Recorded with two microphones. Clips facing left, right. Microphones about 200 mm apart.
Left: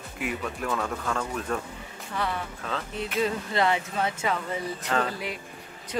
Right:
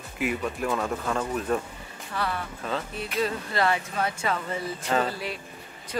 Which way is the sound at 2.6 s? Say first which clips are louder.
Right 2 dB; 5° right (ahead or behind).